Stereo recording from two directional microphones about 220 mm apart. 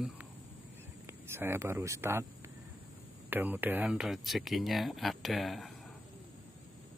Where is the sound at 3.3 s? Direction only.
10° right (ahead or behind).